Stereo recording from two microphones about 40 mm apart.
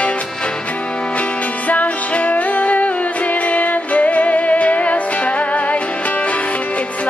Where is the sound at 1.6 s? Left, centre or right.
Left.